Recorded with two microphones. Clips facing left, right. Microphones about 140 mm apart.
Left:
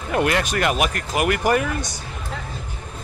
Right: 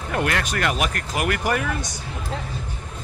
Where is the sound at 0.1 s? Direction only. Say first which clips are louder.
Left 4 dB; 20° left (ahead or behind).